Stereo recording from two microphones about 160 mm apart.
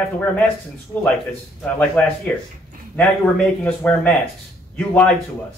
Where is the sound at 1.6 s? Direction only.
5° left (ahead or behind).